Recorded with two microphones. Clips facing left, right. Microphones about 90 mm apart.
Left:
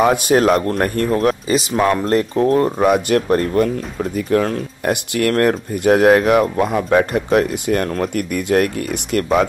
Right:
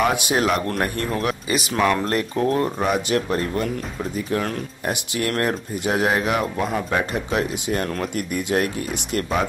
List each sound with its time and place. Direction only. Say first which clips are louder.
0.0 s speech: left 6 dB; 45° left (ahead or behind)
1.1 s speech: left 7 dB; 30° left (ahead or behind)
1.7 s speech: left 2 dB; 20° left (ahead or behind)
2.0 s speech: left 6 dB; 30° left (ahead or behind)
4.8 s speech: left 7 dB; 55° left (ahead or behind)
5.3 s speech: left 8 dB; 45° left (ahead or behind)